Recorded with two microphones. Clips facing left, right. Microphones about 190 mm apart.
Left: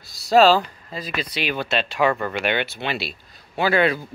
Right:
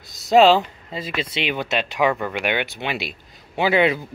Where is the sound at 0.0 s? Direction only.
20° right (ahead or behind).